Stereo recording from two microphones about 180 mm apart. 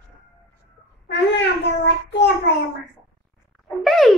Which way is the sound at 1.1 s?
75° left (ahead or behind).